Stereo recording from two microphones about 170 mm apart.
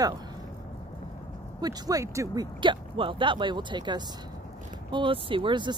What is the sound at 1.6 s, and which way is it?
Speech, 20° right (ahead or behind).